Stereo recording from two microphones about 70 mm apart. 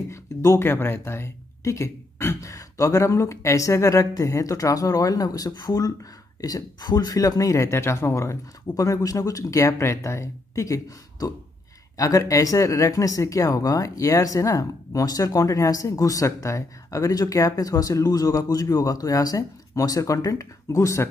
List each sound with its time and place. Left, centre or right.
0.1 s speech: left
0.7 s speech: left
2.5 s speech: left